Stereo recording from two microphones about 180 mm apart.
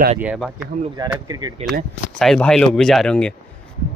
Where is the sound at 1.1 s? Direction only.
20° right (ahead or behind).